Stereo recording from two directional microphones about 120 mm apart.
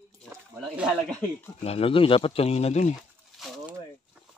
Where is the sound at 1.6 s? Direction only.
55° left (ahead or behind).